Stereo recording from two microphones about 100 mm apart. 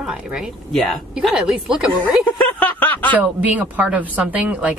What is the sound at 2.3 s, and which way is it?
Snicker, 15° left (ahead or behind).